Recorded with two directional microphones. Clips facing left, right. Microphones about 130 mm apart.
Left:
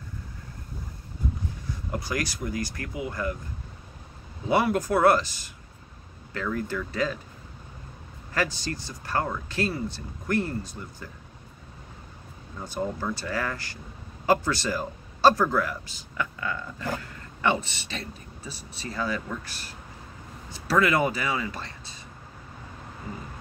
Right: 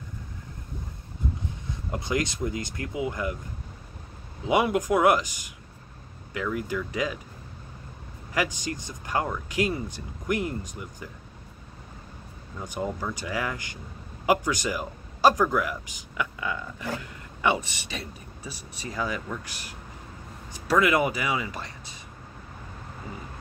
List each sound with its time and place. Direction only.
1.7 s speech: 20° right (ahead or behind)
4.5 s speech: 15° right (ahead or behind)
8.3 s speech: 15° right (ahead or behind)
12.8 s speech: 10° right (ahead or behind)